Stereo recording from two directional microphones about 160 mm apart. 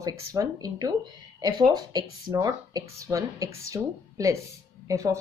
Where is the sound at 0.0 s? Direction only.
20° right (ahead or behind).